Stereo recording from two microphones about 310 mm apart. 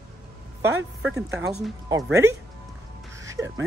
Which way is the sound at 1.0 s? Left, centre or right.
Centre.